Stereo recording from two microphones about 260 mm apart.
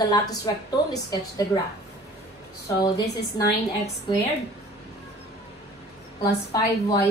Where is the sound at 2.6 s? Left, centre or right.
Centre.